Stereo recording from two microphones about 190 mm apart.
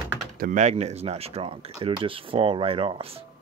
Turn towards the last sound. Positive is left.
turn(degrees=-30)  # may be behind; listen again after turning